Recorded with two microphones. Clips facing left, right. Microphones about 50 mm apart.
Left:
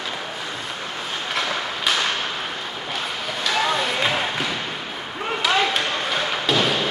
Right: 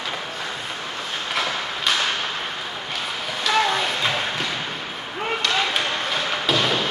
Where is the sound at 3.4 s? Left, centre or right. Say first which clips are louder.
Right 1 dB; centre.